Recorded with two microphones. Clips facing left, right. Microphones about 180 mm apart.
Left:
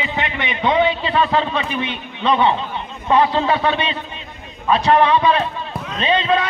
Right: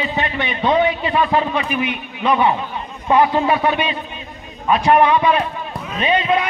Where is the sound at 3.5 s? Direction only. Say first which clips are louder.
Right 1 dB; 25° left (ahead or behind).